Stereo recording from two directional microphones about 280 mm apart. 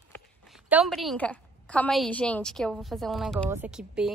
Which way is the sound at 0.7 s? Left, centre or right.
Centre.